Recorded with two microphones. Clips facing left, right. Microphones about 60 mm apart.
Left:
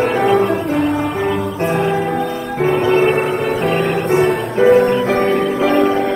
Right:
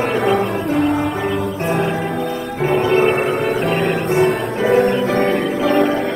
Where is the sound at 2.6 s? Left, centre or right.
Left.